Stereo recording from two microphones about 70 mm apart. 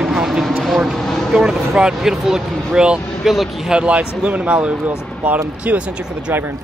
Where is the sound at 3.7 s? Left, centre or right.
Centre.